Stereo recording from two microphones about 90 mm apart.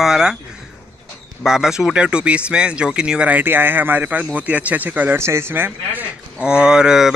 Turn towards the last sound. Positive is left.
turn(degrees=-5)  # may be behind; listen again after turning